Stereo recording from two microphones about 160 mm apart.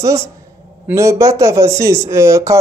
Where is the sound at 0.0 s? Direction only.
20° right (ahead or behind).